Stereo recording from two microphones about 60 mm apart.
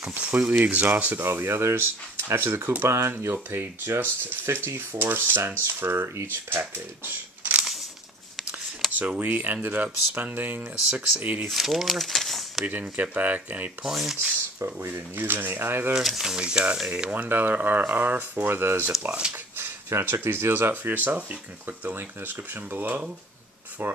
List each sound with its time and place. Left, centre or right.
0.1 s speech: right
0.6 s speech: right
1.2 s speech: right
8.9 s speech: right
11.4 s speech: centre
12.6 s speech: right
13.8 s speech: centre
14.9 s speech: right
15.9 s speech: centre; by 20.7 s right
20.7 s speech: right